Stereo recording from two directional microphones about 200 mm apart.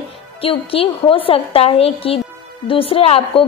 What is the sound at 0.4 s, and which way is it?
A woman's voice, 30° left (ahead or behind).